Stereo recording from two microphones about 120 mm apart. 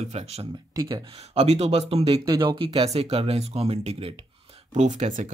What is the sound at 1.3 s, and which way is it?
Speech, 60° right (ahead or behind).